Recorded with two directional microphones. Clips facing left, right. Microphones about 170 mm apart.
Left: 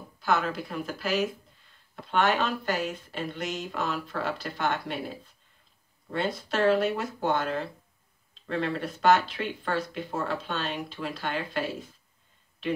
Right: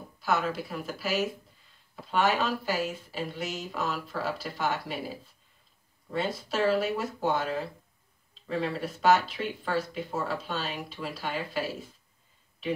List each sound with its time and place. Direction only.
0.2 s speech: centre (ahead or behind)